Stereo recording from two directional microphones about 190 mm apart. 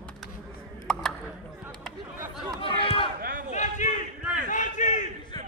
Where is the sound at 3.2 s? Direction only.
45° right (ahead or behind).